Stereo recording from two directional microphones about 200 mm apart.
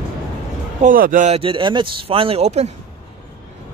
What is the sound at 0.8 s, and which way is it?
Speech, 45° right (ahead or behind).